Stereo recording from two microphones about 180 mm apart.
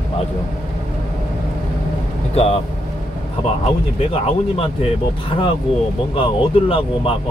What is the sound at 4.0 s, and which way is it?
Speech, 30° left (ahead or behind).